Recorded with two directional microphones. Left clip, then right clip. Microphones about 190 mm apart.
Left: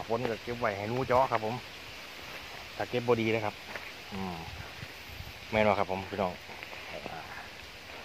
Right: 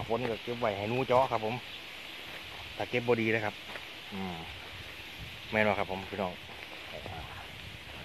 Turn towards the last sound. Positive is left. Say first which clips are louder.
# left 3 dB
turn(degrees=5)  # may be behind; listen again after turning